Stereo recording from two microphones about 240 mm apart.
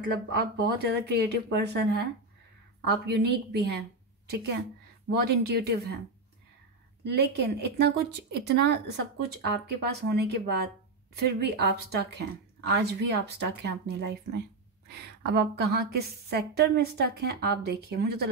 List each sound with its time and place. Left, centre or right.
0.4 s speech: right
2.9 s speech: right
7.1 s speech: right